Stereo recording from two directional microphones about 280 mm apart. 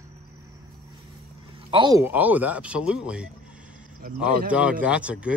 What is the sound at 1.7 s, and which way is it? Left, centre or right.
Speech, centre.